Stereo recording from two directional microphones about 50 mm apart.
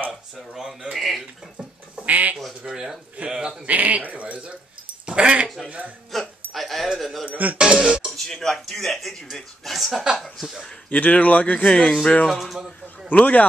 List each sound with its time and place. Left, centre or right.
0.1 s a sound: centre
2.0 s duck: right
2.6 s speech: centre
3.6 s speech: right
5.7 s speech: right
6.1 s music: centre
7.0 s a sound: centre
7.2 s music: right
7.5 s music: centre
8.2 s speech: centre
10.9 s speech: left
11.6 s speech: centre
12.3 s a man's voice: centre
13.1 s speech: left